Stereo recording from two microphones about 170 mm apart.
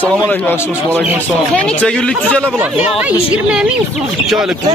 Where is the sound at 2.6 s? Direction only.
10° right (ahead or behind).